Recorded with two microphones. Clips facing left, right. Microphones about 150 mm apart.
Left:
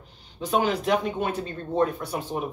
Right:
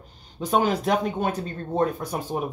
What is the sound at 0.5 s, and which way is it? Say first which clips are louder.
Speech: right 1 dB; 40° right (ahead or behind).